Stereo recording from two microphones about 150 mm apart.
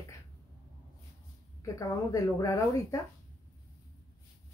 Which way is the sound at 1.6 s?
20° left (ahead or behind).